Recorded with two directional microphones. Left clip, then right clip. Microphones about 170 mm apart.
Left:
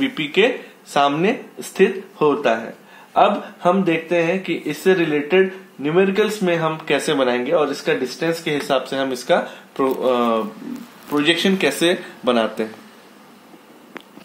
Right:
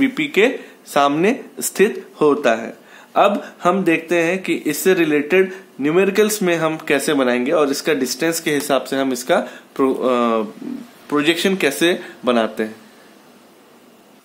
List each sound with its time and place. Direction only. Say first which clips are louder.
0.0 s speech: right 2 dB; 35° right (ahead or behind)